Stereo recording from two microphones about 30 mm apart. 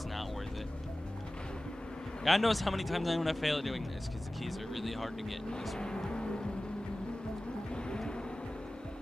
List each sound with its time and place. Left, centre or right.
2.2 s speech: centre
6.0 s music: left